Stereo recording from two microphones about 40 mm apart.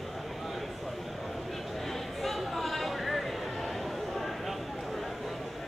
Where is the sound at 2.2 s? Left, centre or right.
Centre.